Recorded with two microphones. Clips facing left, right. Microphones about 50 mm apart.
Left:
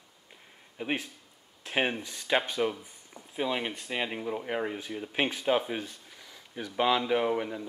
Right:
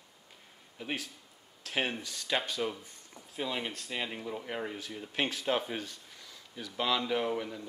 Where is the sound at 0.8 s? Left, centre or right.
Left.